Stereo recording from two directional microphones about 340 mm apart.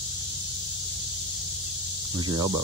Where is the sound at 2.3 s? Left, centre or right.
Centre.